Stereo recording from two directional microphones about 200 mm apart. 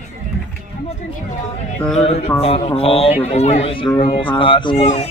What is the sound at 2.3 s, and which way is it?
A man's voice, 30° left (ahead or behind).